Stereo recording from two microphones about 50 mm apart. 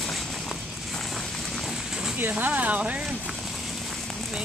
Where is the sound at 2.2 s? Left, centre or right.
Right.